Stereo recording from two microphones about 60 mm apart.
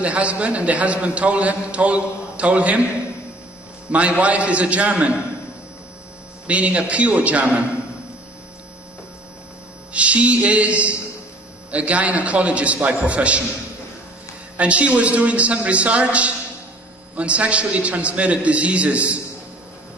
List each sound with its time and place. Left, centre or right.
0.0 s a man's voice: right
3.9 s a man's voice: right
6.4 s a man's voice: right
9.9 s a man's voice: right
14.6 s a man's voice: right